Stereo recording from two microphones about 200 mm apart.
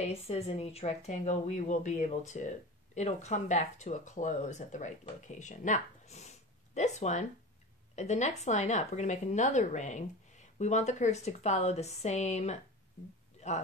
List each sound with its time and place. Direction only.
0.0 s speech: 30° left (ahead or behind)